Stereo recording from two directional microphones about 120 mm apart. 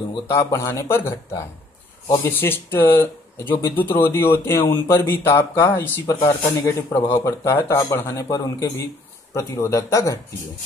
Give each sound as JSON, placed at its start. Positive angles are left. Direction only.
{"t": 0.3, "sound": "speech", "side_deg": 25}